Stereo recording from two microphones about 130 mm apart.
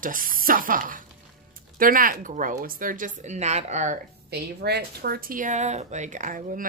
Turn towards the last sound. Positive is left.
turn(degrees=-85)